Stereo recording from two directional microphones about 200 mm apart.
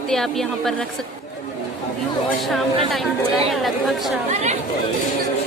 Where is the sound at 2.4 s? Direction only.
Centre (ahead or behind).